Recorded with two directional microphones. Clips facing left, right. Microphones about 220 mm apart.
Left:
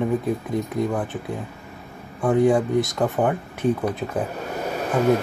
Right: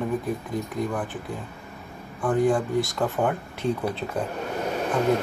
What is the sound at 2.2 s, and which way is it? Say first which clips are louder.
Speech: left 4 dB; 20° left (ahead or behind).